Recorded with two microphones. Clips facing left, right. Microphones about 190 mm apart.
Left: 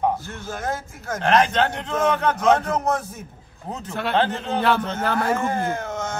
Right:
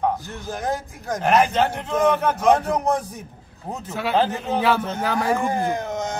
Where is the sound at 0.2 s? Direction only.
15° right (ahead or behind).